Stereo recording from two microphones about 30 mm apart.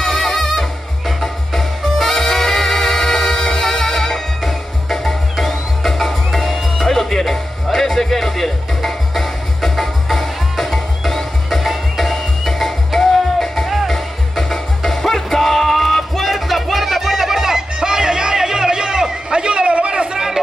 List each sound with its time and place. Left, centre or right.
0.0 s music: centre
17.7 s music: right
19.3 s a sound: right